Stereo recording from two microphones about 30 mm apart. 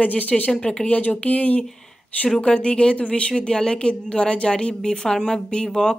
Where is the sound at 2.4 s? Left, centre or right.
Left.